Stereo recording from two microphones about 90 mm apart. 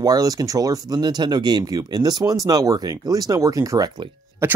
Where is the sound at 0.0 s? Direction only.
40° right (ahead or behind).